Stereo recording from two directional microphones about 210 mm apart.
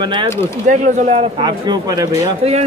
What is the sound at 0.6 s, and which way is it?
A man's voice, 35° right (ahead or behind).